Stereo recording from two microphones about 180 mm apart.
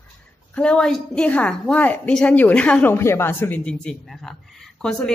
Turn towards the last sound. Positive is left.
turn(degrees=5)  # may be behind; listen again after turning